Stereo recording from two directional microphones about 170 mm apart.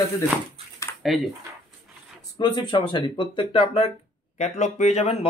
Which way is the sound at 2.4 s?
25° left (ahead or behind).